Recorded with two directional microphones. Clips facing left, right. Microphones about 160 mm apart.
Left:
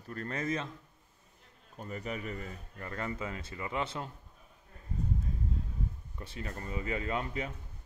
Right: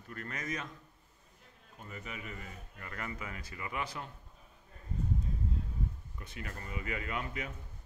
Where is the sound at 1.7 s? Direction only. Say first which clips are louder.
Left 7 dB; 40° left (ahead or behind).